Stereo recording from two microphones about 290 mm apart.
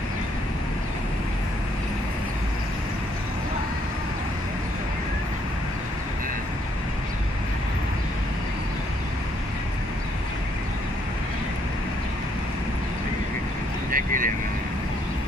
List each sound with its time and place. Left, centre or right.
13.9 s vehicle: right